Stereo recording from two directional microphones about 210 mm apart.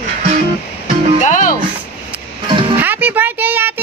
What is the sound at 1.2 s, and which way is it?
Speech, 35° left (ahead or behind).